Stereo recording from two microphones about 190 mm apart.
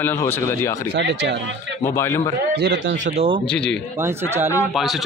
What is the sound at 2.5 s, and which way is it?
Speech, 60° right (ahead or behind).